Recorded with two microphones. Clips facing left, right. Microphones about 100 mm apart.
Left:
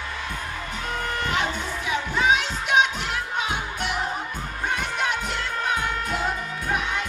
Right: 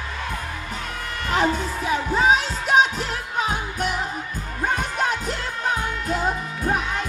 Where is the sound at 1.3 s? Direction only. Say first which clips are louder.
Right 9 dB; 40° right (ahead or behind).